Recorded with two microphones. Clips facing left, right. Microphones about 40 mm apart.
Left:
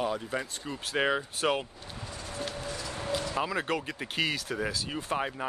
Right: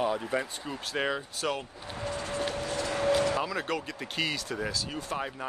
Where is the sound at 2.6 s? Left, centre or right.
Right.